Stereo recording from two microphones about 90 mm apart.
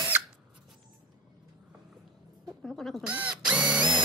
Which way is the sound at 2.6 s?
Centre (ahead or behind).